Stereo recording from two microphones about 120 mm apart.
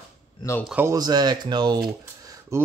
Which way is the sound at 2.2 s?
25° right (ahead or behind).